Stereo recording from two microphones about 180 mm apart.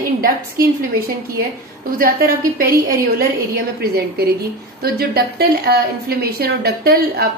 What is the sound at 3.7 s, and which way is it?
A woman's voice, 60° right (ahead or behind).